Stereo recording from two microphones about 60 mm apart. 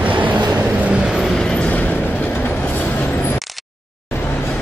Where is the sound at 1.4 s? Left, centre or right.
Left.